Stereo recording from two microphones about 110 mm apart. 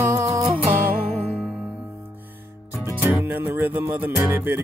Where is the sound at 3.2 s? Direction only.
20° right (ahead or behind).